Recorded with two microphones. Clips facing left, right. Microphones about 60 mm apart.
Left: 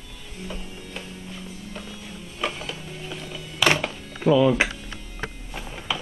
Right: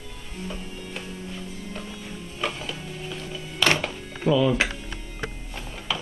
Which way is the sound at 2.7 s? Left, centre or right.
Centre.